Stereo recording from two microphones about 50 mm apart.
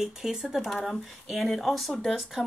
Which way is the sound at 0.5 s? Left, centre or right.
Centre.